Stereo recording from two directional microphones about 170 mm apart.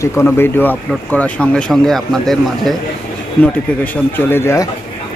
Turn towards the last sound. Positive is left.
turn(degrees=15)  # may be behind; listen again after turning